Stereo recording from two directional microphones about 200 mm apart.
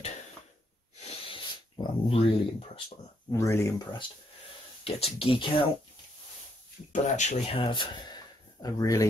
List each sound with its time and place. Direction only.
0.9 s dog: 30° left (ahead or behind)
3.3 s speech: 15° left (ahead or behind)
4.8 s speech: 30° left (ahead or behind)
6.9 s speech: 35° left (ahead or behind); by 9.0 s 15° left (ahead or behind)